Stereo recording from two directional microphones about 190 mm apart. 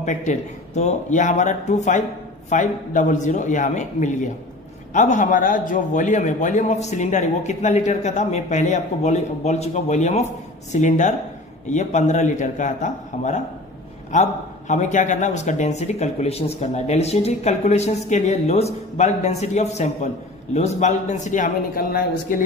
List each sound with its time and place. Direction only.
0.0 s speech: 40° left (ahead or behind)
14.7 s speech: 40° left (ahead or behind)